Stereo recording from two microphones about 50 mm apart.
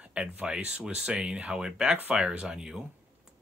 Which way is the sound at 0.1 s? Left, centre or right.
Right.